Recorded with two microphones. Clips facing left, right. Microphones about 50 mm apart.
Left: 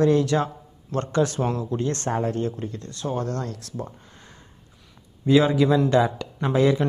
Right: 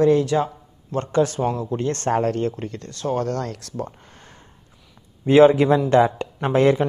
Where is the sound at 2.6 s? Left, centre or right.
Right.